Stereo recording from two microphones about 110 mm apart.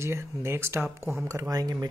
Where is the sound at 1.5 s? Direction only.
35° right (ahead or behind).